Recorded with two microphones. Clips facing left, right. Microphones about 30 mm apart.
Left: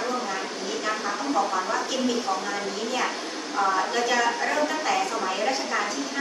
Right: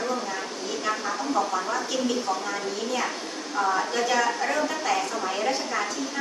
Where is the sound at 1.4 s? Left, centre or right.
Centre.